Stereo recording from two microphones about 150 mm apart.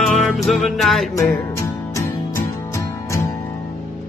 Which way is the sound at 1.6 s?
15° left (ahead or behind).